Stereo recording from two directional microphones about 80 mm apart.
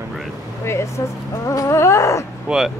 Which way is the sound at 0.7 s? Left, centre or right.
Left.